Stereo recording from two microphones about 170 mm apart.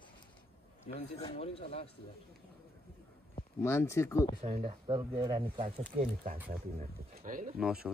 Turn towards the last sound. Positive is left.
turn(degrees=-5)  # may be behind; listen again after turning